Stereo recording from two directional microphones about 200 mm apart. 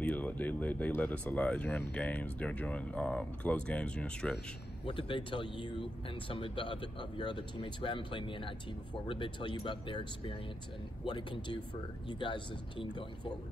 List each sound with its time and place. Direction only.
0.0 s speech: 10° left (ahead or behind)
4.8 s speech: 25° left (ahead or behind)